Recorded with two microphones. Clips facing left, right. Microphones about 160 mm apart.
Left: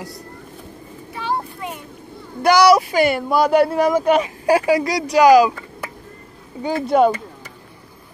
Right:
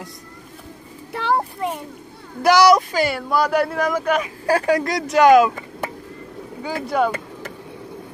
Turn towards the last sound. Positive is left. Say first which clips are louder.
# left 5 dB
turn(degrees=25)  # may be behind; listen again after turning